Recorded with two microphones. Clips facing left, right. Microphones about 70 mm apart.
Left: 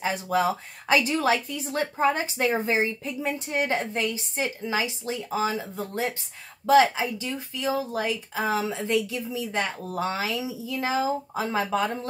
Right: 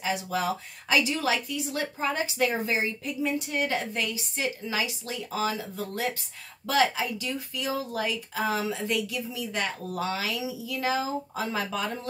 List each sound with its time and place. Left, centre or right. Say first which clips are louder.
0.0 s speech: left 4 dB; left